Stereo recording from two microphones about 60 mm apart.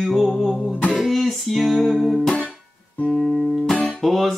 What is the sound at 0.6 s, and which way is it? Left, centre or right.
Music, centre.